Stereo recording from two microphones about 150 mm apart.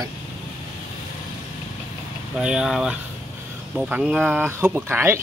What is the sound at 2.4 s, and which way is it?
Speech, 5° right (ahead or behind).